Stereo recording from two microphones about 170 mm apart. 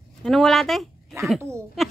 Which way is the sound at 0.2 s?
Centre (ahead or behind).